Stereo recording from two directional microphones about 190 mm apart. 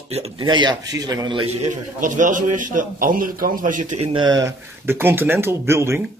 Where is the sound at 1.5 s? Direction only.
40° right (ahead or behind); by 6.0 s 15° right (ahead or behind).